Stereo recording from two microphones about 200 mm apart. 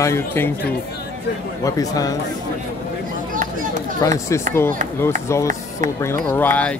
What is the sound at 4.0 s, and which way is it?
Speech, 15° left (ahead or behind).